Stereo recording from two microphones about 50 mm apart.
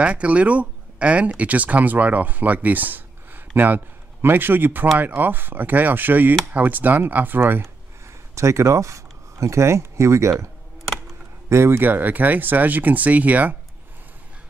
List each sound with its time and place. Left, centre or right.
0.0 s speech: right
8.4 s speech: right
11.4 s speech: right
11.8 s speech: right